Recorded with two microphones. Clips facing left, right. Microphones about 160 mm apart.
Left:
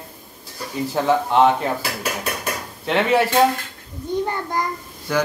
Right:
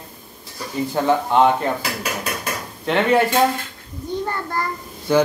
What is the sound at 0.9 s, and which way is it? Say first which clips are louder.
Speech: even; centre (ahead or behind).